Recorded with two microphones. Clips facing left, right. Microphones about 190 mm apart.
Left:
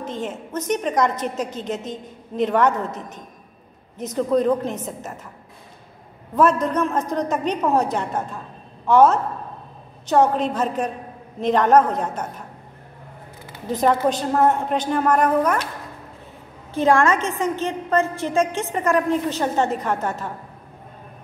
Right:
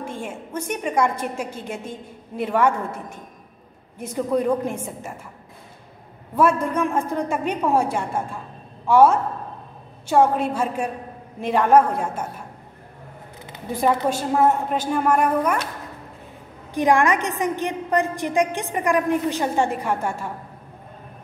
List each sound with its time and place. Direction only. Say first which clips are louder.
0.0 s a woman's voice: left 3 dB; 10° right (ahead or behind)
4.0 s a woman's voice: left 2 dB; 10° right (ahead or behind)
6.3 s a woman's voice: left 1 dB; 10° right (ahead or behind)
13.5 s a woman's voice: left 2 dB; 10° right (ahead or behind)
16.7 s a woman's voice: left 1 dB; 15° right (ahead or behind)